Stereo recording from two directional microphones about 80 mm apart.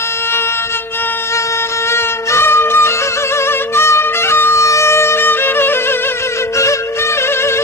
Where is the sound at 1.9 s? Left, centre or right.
Left.